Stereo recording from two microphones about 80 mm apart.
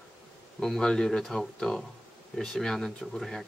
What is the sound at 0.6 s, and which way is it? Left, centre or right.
Speech, centre.